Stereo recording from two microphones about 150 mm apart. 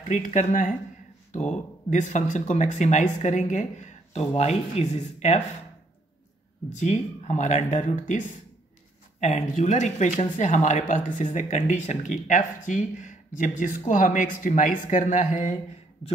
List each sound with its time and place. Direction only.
0.1 s speech: 55° left (ahead or behind)
6.7 s speech: 50° left (ahead or behind)